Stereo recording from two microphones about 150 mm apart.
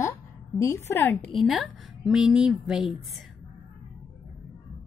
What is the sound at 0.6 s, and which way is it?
Speech, 20° left (ahead or behind).